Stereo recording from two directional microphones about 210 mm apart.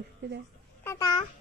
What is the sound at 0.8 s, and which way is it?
Babbling, 20° left (ahead or behind).